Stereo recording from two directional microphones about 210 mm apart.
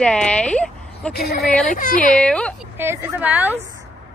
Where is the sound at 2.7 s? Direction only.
10° right (ahead or behind).